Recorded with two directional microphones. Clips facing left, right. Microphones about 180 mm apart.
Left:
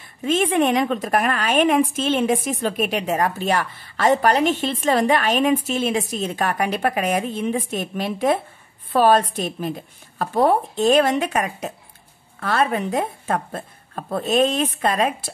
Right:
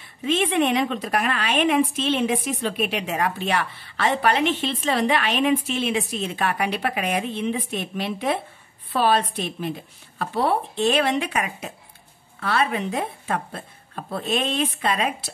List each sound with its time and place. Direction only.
0.2 s a woman's voice: 45° left (ahead or behind)